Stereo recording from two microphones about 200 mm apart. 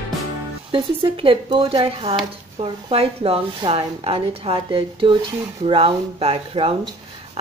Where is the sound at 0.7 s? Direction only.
25° right (ahead or behind).